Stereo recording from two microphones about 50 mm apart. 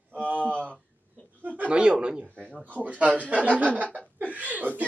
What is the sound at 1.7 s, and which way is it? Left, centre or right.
Speech, centre.